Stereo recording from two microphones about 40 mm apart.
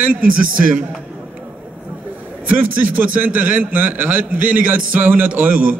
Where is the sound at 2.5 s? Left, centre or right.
Right.